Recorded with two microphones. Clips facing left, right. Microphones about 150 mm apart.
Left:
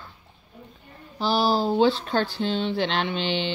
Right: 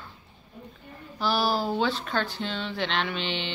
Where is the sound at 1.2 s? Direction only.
30° left (ahead or behind).